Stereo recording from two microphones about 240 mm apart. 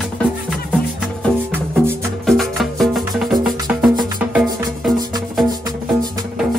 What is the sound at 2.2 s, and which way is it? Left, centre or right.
Music, centre.